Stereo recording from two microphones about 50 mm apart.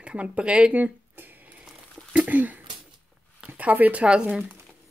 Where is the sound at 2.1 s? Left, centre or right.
Right.